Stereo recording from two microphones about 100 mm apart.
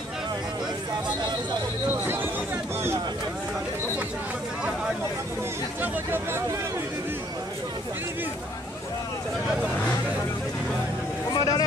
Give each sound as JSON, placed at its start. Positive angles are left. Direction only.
{"t": 2.0, "sound": "chatter", "side_deg": -20}
{"t": 5.8, "sound": "a sound", "side_deg": -25}
{"t": 11.3, "sound": "vehicle", "side_deg": 40}